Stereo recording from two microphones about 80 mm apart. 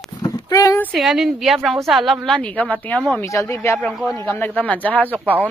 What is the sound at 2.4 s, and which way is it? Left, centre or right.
Speech, centre.